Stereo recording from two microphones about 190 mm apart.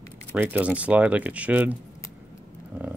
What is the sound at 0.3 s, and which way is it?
Speech, 10° right (ahead or behind).